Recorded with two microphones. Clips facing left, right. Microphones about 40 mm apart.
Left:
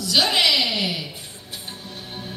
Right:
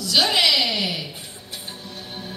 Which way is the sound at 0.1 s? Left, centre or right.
Centre.